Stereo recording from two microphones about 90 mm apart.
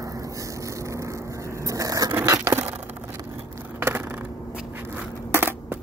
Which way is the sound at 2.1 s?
35° right (ahead or behind).